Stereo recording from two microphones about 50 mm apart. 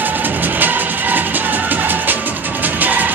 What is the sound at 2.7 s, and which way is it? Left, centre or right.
Music, right.